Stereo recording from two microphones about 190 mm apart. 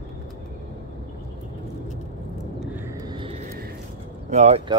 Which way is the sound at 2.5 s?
10° right (ahead or behind).